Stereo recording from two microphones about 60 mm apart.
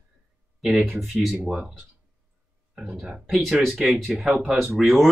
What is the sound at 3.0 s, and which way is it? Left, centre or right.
Speech, centre.